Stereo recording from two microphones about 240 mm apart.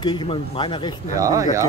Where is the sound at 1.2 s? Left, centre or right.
Centre.